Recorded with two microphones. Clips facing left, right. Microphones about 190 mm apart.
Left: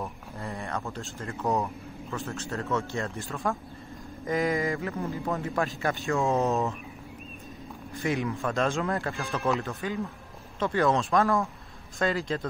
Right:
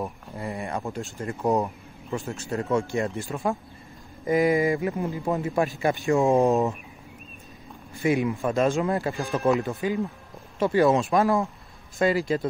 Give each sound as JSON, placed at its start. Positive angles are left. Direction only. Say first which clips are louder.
{"t": 0.0, "sound": "speech", "louder": "right 4 dB", "side_deg": -15}
{"t": 7.9, "sound": "speech", "louder": "right 5 dB", "side_deg": -10}